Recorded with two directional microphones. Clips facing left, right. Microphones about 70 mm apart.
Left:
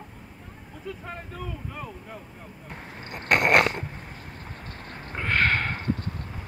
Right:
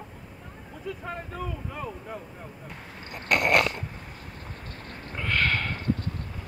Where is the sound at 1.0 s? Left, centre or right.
Centre.